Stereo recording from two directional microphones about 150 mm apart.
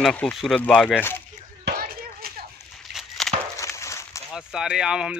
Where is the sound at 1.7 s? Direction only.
90° right.